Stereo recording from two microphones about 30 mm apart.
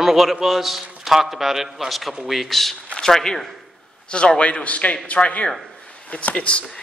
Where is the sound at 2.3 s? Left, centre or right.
Centre.